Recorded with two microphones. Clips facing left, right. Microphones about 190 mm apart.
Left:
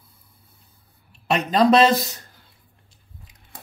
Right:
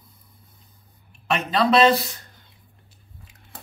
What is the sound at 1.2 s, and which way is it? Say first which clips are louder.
Speech: left 4 dB; 40° left (ahead or behind).